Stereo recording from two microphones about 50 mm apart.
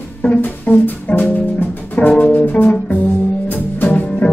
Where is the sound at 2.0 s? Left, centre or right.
Left.